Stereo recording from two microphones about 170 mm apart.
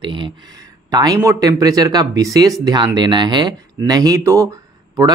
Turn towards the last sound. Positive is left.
turn(degrees=-20)  # may be behind; listen again after turning